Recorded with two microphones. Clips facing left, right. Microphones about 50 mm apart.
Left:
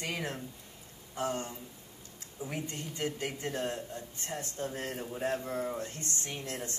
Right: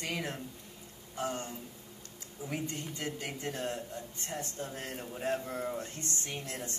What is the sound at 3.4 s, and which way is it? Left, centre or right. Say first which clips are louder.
Speech: even; left.